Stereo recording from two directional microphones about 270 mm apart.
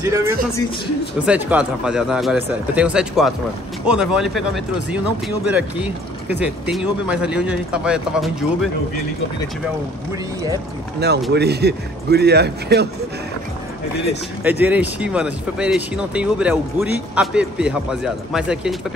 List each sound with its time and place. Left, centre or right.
0.0 s speech: centre
5.5 s speech: centre
11.0 s speech: right
14.4 s speech: centre